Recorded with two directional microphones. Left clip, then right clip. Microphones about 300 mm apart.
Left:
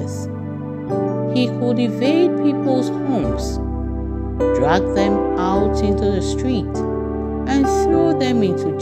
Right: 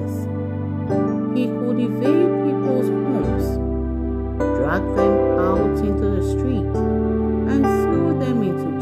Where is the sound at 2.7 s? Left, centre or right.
Centre.